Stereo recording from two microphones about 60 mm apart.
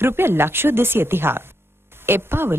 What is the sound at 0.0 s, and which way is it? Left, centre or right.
A woman's voice, right.